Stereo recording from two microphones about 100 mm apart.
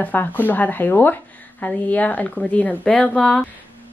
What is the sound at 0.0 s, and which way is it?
Speech, 20° left (ahead or behind).